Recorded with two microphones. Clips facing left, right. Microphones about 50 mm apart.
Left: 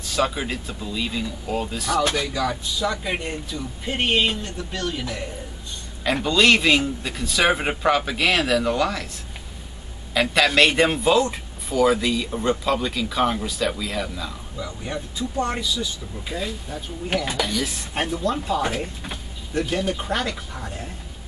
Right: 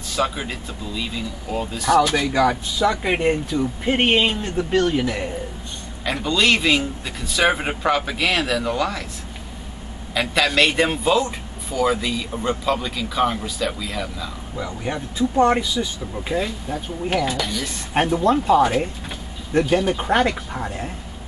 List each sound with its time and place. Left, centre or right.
0.1 s a man's voice: centre
2.1 s speech: right
6.0 s a man's voice: centre
10.1 s a man's voice: centre
14.6 s speech: right
17.4 s a man's voice: centre
17.9 s speech: right